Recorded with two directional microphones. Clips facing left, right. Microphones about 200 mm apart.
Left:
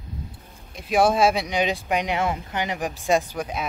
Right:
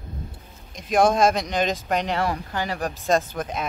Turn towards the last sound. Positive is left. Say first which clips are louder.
# even
turn(degrees=10)  # may be behind; listen again after turning